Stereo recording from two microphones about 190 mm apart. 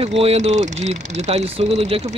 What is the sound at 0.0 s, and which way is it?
Speech, 30° right (ahead or behind).